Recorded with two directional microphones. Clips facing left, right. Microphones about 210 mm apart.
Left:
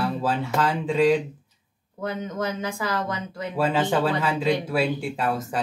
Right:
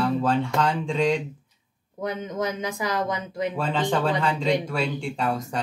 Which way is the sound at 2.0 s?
20° right (ahead or behind).